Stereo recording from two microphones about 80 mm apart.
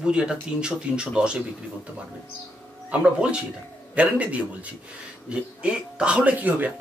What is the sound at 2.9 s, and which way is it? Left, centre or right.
Speech, centre.